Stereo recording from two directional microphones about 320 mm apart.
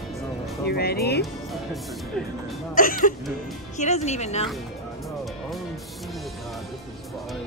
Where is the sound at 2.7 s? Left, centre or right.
Left.